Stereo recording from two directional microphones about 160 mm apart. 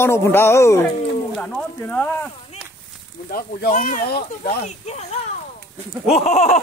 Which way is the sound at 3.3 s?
60° left (ahead or behind).